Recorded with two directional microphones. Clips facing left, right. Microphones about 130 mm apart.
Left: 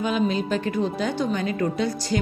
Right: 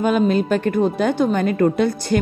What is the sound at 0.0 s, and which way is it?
A woman's voice, 50° right (ahead or behind).